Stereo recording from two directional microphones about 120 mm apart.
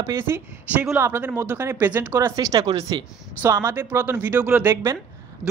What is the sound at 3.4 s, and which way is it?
Speech, 20° right (ahead or behind).